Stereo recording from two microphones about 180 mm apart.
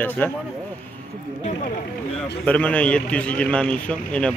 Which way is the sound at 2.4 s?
5° left (ahead or behind).